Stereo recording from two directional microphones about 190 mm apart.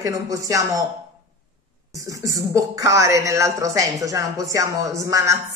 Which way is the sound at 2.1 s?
20° right (ahead or behind).